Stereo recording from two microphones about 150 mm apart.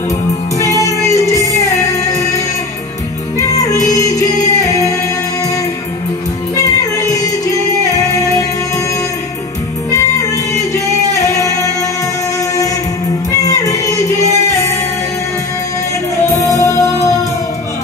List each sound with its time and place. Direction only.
0.6 s music: 20° left (ahead or behind)
6.6 s music: 25° left (ahead or behind)
11.1 s music: 20° left (ahead or behind)
13.4 s music: 25° left (ahead or behind)
16.5 s music: 20° left (ahead or behind)